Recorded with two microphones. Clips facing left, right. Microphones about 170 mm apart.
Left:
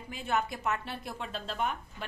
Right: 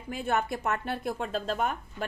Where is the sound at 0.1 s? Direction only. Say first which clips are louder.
Right 3 dB; 50° right (ahead or behind).